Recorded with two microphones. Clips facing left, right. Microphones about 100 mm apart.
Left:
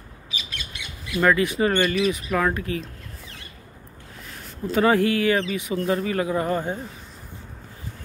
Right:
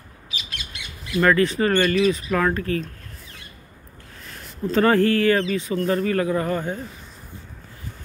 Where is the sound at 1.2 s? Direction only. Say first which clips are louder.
Right 1 dB; 15° left (ahead or behind).